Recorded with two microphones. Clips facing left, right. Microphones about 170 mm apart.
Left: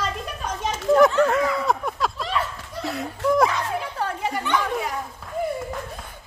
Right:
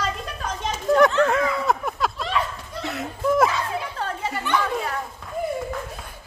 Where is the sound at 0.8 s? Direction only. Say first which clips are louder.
Left 1 dB; centre (ahead or behind).